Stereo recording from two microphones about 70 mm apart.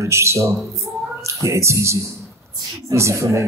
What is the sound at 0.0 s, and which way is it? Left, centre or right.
Speech, right.